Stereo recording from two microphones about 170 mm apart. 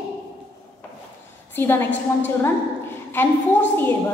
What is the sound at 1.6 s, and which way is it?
Speech, 10° left (ahead or behind).